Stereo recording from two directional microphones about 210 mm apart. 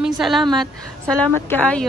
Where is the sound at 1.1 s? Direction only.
5° left (ahead or behind).